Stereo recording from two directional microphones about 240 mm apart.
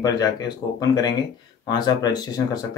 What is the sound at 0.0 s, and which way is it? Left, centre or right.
Speech, centre.